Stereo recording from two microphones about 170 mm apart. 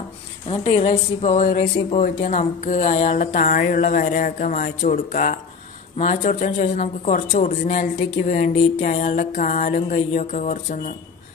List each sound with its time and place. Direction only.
0.5 s a woman's voice: 40° left (ahead or behind)